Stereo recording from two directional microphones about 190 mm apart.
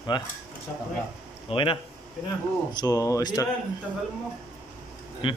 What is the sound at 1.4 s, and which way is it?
Speech, 30° left (ahead or behind).